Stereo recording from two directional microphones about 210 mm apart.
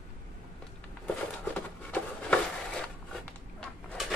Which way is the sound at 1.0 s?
10° left (ahead or behind).